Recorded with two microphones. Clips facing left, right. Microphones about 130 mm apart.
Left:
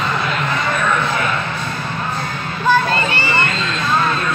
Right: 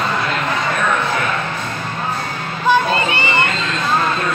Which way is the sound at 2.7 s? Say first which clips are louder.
Right 1 dB; 15° right (ahead or behind).